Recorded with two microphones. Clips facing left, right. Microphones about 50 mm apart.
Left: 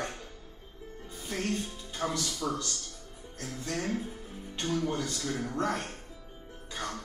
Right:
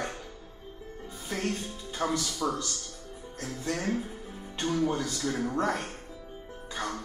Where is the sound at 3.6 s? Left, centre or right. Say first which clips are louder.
Right 2 dB; centre.